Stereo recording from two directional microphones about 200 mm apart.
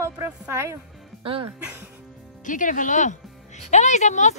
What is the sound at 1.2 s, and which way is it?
Speech, 25° right (ahead or behind).